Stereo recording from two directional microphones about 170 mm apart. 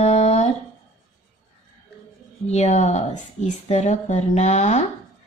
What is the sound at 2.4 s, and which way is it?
Speech, 40° left (ahead or behind).